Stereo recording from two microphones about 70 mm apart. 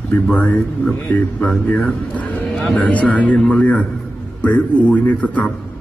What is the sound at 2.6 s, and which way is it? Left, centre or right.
A man's voice, left.